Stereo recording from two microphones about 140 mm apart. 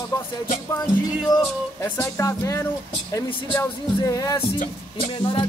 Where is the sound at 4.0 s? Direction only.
25° left (ahead or behind).